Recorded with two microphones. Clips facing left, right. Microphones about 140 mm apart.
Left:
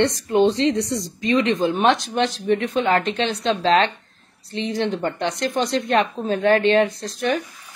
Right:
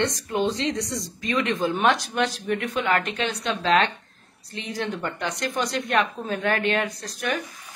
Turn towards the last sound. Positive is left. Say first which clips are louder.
# left 6 dB
turn(degrees=25)  # may be behind; listen again after turning